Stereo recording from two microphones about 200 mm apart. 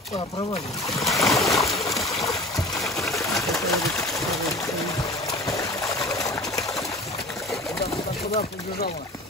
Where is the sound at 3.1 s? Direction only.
15° left (ahead or behind).